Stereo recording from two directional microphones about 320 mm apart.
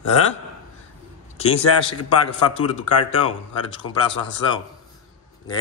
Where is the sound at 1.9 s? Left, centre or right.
Left.